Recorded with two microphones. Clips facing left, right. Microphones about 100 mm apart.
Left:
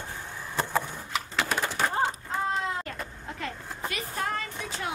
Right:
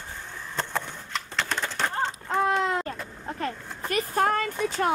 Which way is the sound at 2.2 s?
75° right (ahead or behind).